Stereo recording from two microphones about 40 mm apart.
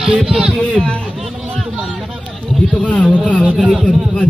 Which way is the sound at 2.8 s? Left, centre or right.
Left.